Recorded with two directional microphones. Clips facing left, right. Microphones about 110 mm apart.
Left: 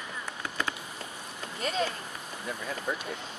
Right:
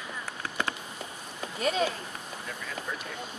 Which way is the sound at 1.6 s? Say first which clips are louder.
Right 3 dB; 5° right (ahead or behind).